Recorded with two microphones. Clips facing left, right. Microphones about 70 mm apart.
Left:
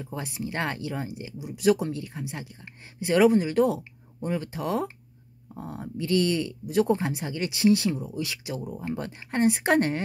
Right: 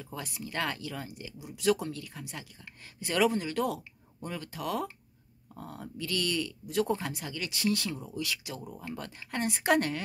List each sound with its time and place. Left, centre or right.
0.0 s speech: left